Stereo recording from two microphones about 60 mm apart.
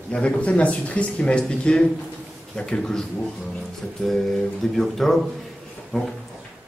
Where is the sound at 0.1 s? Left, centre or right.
Centre.